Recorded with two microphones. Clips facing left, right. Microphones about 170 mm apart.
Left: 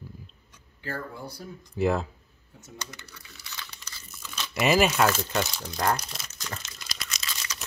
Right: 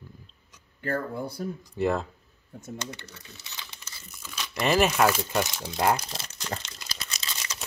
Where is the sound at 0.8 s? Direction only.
50° right (ahead or behind).